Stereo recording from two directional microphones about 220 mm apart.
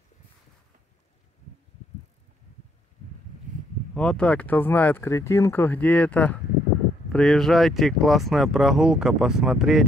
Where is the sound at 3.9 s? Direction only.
5° left (ahead or behind).